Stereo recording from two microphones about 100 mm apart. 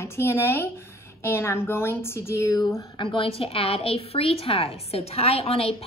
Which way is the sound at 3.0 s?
60° left (ahead or behind).